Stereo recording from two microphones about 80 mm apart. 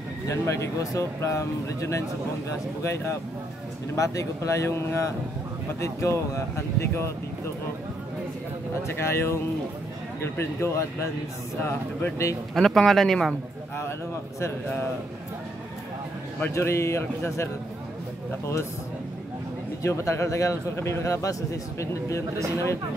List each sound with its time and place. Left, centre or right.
0.3 s speech: left
8.8 s speech: left
12.5 s speech: centre
16.5 s speech: left
19.8 s speech: left